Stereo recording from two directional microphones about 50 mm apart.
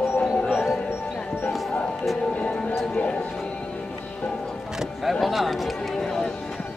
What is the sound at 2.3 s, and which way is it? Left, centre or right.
Music, left.